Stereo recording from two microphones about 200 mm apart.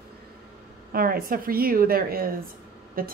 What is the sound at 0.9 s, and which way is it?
A woman's voice, 45° right (ahead or behind).